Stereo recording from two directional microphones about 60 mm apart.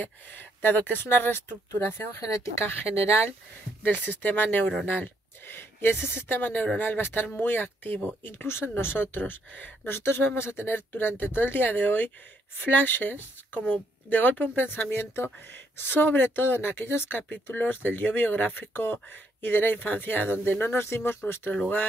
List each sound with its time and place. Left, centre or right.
0.0 s speech: left
1.7 s speech: left
2.6 s speech: left